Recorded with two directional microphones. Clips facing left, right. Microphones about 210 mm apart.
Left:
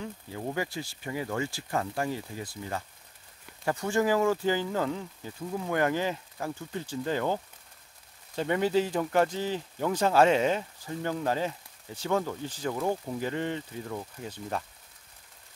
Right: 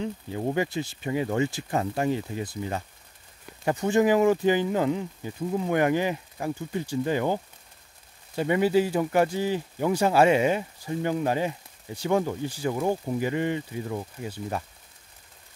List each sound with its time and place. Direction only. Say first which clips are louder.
0.0 s speech: right 7 dB; 25° right (ahead or behind); by 14.6 s 10° right (ahead or behind)